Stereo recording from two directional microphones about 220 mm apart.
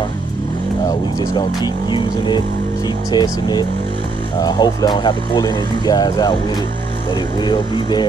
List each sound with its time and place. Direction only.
0.8 s speech: 15° left (ahead or behind)